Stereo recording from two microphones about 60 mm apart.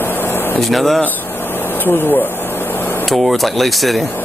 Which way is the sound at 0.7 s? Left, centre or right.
Centre.